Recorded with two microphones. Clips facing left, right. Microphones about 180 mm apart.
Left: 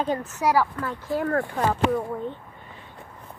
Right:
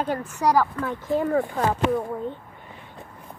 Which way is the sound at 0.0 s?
10° right (ahead or behind).